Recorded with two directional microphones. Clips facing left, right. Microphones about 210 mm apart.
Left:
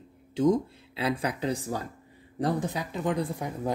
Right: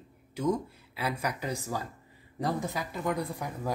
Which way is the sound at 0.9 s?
20° left (ahead or behind).